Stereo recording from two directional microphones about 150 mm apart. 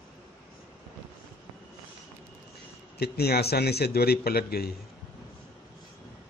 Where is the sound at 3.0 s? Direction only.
90° left.